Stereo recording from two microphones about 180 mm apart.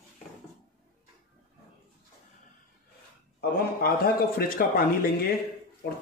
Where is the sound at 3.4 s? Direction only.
60° left (ahead or behind).